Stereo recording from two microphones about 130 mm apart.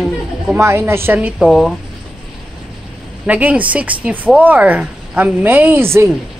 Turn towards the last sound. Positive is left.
turn(degrees=-20)  # may be behind; listen again after turning